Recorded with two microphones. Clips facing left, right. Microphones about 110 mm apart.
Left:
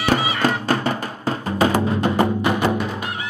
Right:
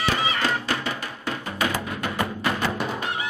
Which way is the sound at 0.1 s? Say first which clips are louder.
Left 5 dB; 40° left (ahead or behind).